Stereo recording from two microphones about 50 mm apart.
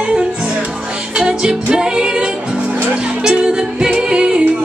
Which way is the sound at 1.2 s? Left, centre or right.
Centre.